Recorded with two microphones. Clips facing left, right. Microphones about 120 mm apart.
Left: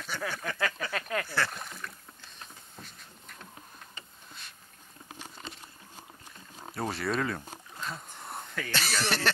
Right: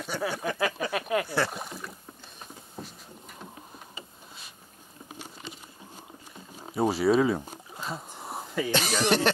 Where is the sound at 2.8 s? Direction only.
10° right (ahead or behind).